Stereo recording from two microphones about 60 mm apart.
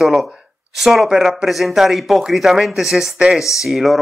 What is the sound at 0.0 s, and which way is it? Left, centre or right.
Speech, centre.